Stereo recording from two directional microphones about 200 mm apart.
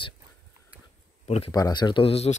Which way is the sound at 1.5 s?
20° left (ahead or behind).